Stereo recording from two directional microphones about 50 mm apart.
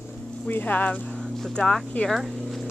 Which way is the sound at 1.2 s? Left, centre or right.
Centre.